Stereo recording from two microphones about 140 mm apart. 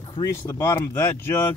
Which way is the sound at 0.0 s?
25° left (ahead or behind).